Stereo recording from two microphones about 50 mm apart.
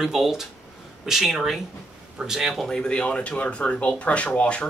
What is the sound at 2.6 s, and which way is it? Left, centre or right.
Speech, centre.